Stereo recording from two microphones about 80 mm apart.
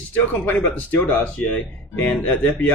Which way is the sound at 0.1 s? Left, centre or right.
Centre.